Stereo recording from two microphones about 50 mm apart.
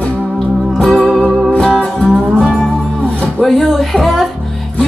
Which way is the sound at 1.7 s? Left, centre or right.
Left.